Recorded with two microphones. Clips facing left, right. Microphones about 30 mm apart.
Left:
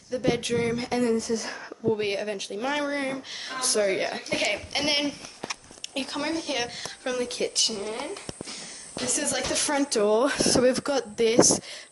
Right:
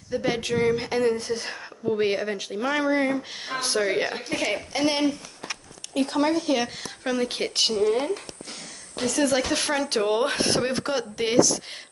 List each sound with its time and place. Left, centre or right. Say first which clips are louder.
0.1 s speech: even; centre
1.1 s speech: left 1 dB; right
1.9 s speech: right 2 dB; centre
3.5 s speech: right 1 dB; right
4.7 s speech: right 3 dB; left
5.9 s speech: right 6 dB; centre
7.2 s speech: right 2 dB; right
7.7 s speech: right 11 dB; centre
9.0 s speech: right 6 dB; centre